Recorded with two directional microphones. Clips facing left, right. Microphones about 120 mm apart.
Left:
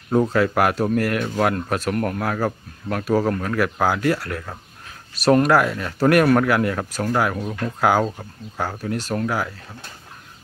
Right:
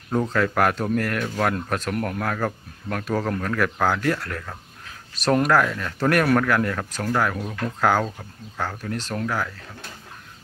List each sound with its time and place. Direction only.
0.1 s speech: 15° left (ahead or behind)